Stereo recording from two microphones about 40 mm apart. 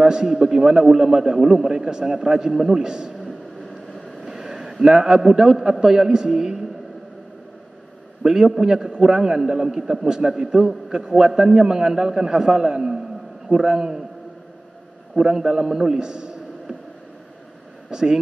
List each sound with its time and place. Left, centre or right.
0.0 s a man's voice: centre
2.8 s a man's voice: centre
4.2 s a sound: centre
4.8 s a man's voice: centre
8.2 s a man's voice: centre
15.1 s a man's voice: centre
15.7 s a sound: centre
17.8 s speech: centre